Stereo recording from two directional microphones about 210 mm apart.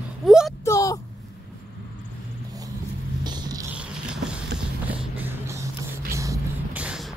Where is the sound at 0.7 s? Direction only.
15° left (ahead or behind).